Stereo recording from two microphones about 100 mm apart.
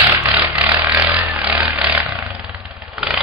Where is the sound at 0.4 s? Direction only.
15° right (ahead or behind).